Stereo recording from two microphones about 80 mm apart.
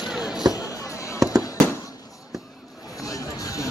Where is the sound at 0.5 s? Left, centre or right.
Left.